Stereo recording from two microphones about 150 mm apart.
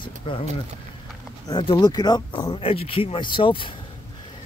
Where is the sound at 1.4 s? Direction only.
30° left (ahead or behind).